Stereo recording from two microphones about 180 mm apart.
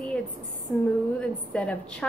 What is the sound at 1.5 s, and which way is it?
Speech, 5° left (ahead or behind).